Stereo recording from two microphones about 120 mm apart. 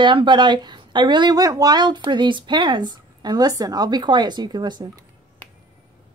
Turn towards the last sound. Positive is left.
turn(degrees=-40)  # may be behind; listen again after turning